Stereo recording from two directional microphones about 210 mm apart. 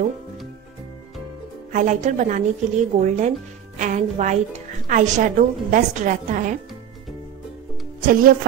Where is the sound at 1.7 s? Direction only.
35° right (ahead or behind).